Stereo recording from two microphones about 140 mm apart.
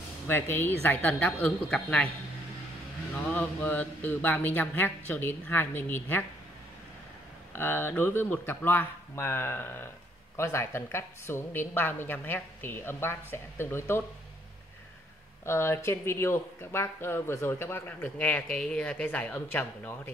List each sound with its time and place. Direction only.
0.3 s speech: 15° left (ahead or behind)
3.3 s speech: 10° left (ahead or behind)
7.5 s speech: 15° left (ahead or behind)
15.4 s speech: 20° left (ahead or behind)